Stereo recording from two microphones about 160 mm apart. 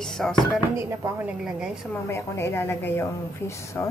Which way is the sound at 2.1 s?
15° left (ahead or behind).